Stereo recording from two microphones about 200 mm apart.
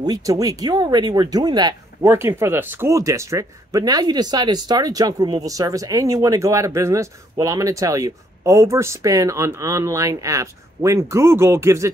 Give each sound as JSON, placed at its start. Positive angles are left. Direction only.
{"t": 0.0, "sound": "speech", "side_deg": -20}